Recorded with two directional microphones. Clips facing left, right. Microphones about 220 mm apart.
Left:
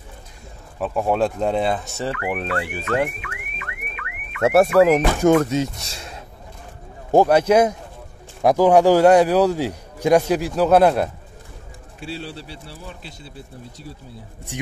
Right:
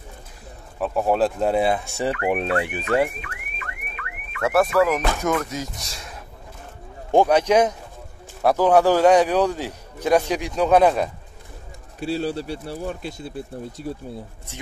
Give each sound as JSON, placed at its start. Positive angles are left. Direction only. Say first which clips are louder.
{"t": 0.7, "sound": "speech", "louder": "even", "side_deg": 0}
{"t": 3.2, "sound": "car alarm", "louder": "left 1 dB", "side_deg": -35}
{"t": 4.4, "sound": "speech", "louder": "left 4 dB", "side_deg": 25}
{"t": 7.1, "sound": "a man's voice", "louder": "left 2 dB", "side_deg": 5}
{"t": 12.0, "sound": "speech", "louder": "right 7 dB", "side_deg": -40}